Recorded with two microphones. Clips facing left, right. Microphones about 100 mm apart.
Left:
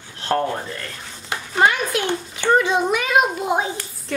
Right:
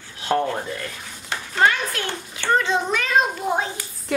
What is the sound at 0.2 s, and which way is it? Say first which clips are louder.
Rub: left 1 dB; 10° right (ahead or behind).